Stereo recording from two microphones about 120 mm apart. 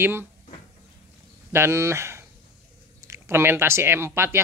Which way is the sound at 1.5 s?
20° right (ahead or behind).